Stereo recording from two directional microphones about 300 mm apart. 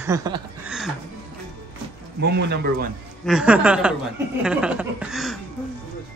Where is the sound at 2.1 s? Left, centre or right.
Right.